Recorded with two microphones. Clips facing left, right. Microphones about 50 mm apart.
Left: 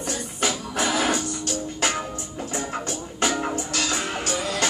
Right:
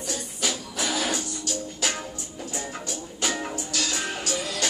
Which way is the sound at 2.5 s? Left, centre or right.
Left.